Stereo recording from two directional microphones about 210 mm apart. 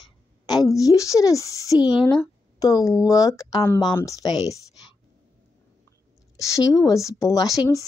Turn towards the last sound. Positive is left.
turn(degrees=15)  # may be behind; listen again after turning